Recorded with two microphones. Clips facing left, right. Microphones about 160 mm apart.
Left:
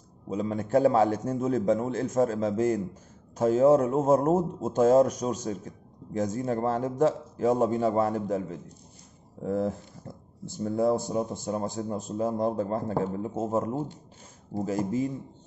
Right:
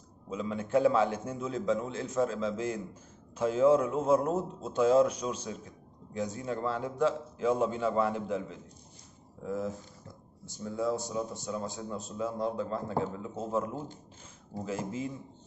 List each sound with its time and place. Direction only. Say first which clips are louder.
0.3 s a man's voice: left 4 dB; 40° left (ahead or behind)
9.4 s a man's voice: left 6 dB; 55° left (ahead or behind); by 15.0 s 40° left (ahead or behind)